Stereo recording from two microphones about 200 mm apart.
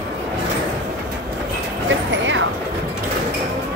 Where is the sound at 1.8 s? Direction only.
70° right (ahead or behind).